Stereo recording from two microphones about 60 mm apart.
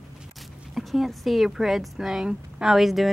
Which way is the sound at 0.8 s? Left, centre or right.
Centre.